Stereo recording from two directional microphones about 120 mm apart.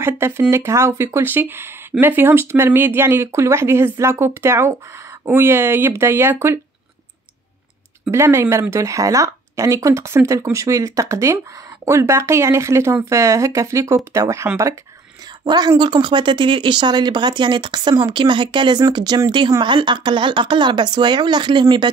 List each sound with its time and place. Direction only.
0.0 s speech: 20° right (ahead or behind)
8.1 s a woman's voice: 25° right (ahead or behind); by 21.9 s 40° right (ahead or behind)